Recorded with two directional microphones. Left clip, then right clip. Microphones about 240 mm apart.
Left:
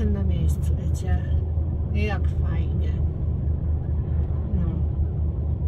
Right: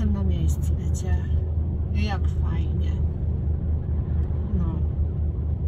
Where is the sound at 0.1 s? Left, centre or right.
Centre.